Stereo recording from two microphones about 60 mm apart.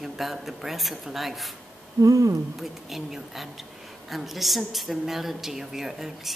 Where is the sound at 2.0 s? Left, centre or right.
Right.